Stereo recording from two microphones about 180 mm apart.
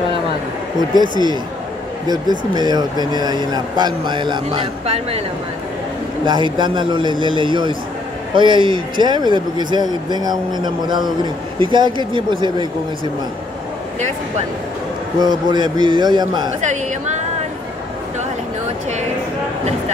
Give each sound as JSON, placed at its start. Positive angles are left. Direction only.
{"t": 1.1, "sound": "speech", "side_deg": -25}
{"t": 6.2, "sound": "speech", "side_deg": -25}
{"t": 15.1, "sound": "speech", "side_deg": -25}